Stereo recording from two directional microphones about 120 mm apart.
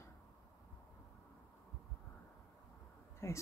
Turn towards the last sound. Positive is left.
turn(degrees=20)  # may be behind; listen again after turning